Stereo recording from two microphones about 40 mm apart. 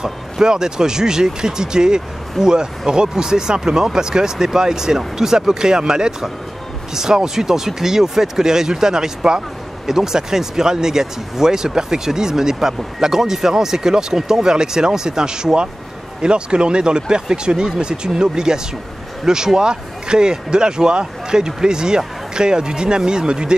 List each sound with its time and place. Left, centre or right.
0.0 s speech: centre